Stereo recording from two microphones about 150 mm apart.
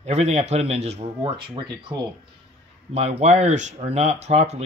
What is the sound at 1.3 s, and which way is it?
Speech, 30° right (ahead or behind).